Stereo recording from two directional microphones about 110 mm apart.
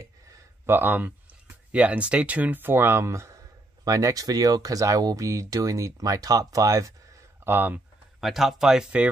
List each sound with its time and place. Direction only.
0.7 s speech: 20° right (ahead or behind)
7.4 s speech: 20° right (ahead or behind)
8.2 s speech: centre (ahead or behind)